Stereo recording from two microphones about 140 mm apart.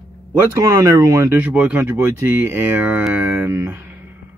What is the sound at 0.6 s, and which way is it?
Speech, 25° right (ahead or behind).